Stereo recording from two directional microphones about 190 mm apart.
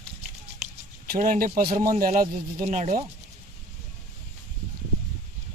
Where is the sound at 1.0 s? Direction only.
45° right (ahead or behind).